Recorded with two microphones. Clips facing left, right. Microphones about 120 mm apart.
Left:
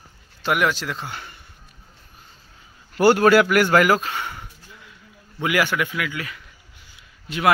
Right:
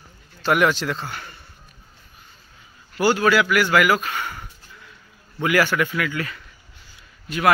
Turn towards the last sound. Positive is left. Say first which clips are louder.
# right 1 dB
turn(degrees=20)  # may be behind; listen again after turning